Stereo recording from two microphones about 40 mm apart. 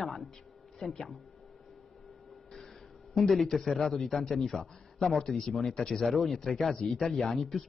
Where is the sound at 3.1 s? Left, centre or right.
Centre.